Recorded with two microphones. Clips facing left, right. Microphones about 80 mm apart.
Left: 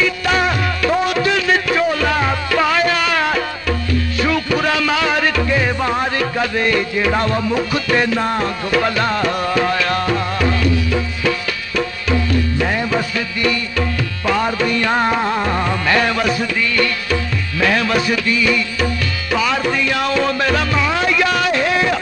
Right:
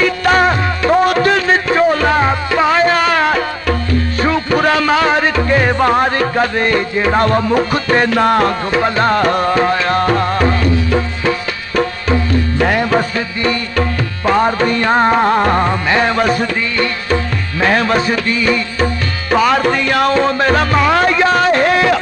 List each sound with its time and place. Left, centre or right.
0.0 s music: right
5.5 s music: right
7.2 s music: right
8.1 s music: right
8.7 s music: right
9.0 s music: right
10.0 s music: right
12.5 s music: right
13.4 s tabla: right
15.7 s music: right
19.3 s music: right
20.2 s music: right
21.1 s a sound: right